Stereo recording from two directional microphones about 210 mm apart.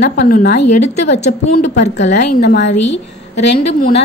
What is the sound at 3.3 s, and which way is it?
Speech, 30° left (ahead or behind).